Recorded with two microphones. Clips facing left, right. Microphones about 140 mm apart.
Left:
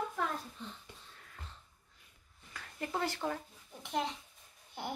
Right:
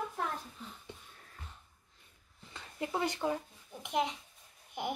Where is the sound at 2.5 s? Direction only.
20° right (ahead or behind).